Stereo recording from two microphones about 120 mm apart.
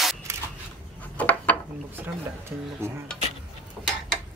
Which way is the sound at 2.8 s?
20° right (ahead or behind).